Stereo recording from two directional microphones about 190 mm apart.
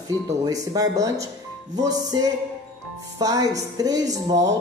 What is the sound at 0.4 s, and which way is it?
Speech, 20° right (ahead or behind).